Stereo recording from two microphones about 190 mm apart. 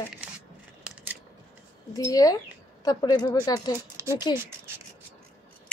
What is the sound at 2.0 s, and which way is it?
Speech, 20° left (ahead or behind).